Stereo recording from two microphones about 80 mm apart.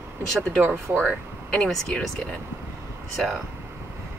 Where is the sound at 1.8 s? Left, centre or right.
Centre.